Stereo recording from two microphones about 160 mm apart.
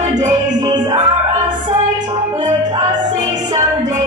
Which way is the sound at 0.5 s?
25° right (ahead or behind).